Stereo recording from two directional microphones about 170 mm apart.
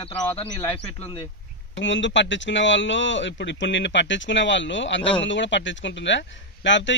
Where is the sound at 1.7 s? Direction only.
90° left.